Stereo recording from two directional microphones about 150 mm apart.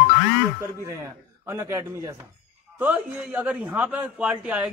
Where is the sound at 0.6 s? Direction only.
15° right (ahead or behind).